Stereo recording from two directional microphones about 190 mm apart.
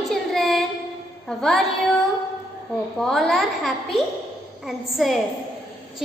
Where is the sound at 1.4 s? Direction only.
Centre (ahead or behind).